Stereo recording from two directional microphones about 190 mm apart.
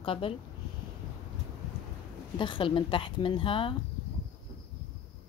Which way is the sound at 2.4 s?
25° left (ahead or behind).